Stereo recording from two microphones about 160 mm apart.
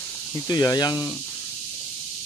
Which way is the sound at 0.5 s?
25° left (ahead or behind).